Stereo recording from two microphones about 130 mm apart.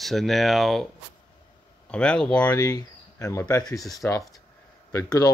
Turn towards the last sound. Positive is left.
turn(degrees=30)  # may be behind; listen again after turning